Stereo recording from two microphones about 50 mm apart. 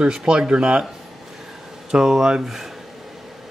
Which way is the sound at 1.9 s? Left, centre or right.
Centre.